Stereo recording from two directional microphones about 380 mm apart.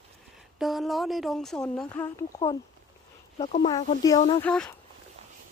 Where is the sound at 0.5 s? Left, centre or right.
Centre.